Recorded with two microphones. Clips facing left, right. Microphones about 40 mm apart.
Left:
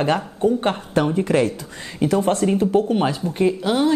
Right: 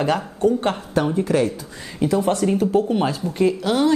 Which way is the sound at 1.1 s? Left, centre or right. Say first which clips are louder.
Left 1 dB; left.